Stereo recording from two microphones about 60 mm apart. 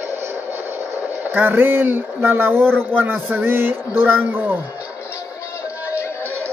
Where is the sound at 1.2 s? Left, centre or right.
Right.